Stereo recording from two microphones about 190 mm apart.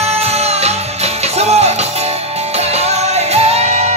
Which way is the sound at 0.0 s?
35° right (ahead or behind).